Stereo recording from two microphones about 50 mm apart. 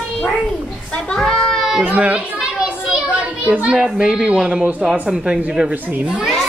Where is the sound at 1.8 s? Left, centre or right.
Right.